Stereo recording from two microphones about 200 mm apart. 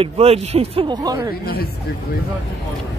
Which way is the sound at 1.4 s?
50° left (ahead or behind).